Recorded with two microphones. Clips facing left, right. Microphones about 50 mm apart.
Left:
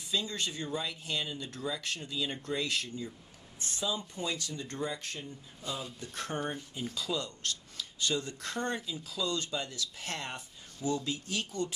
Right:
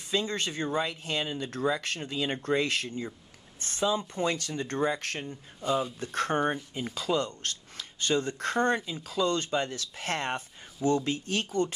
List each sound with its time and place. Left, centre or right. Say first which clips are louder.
0.1 s speech: right 5 dB; right
5.9 s speech: right 9 dB; right
6.5 s speech: right 4 dB; right